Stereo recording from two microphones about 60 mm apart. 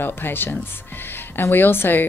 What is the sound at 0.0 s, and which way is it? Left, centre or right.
A woman's voice, left.